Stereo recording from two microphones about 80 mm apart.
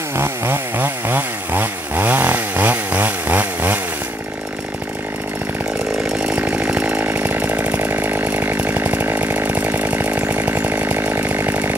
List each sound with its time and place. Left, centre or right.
0.2 s chainsaw: right
6.1 s chainsaw: centre